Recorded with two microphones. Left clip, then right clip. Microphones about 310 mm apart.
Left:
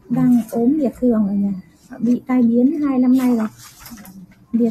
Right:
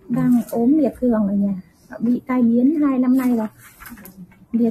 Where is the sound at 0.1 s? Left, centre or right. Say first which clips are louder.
Left 2 dB; centre.